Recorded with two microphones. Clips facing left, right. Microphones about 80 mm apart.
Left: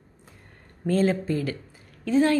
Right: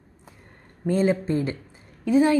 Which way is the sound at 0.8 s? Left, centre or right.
Centre.